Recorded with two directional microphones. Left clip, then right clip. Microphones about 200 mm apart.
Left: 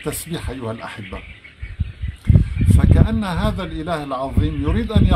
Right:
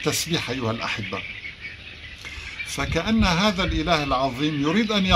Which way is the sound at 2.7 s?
10° left (ahead or behind).